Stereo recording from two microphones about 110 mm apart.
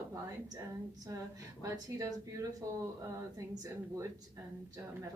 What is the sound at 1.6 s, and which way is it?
Speech, 30° right (ahead or behind).